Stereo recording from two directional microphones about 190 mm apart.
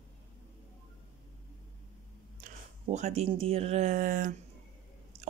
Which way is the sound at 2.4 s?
40° right (ahead or behind).